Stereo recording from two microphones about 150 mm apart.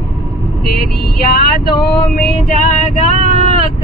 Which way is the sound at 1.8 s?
85° left.